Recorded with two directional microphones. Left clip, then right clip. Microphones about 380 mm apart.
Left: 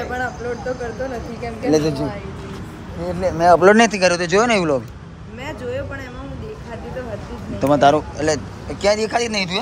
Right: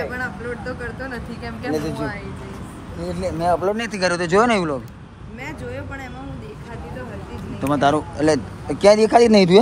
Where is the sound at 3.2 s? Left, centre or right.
Left.